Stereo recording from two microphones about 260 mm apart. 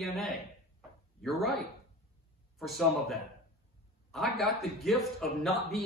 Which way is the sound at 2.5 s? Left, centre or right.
Centre.